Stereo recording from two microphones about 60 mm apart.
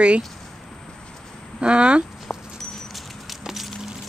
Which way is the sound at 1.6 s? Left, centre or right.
Centre.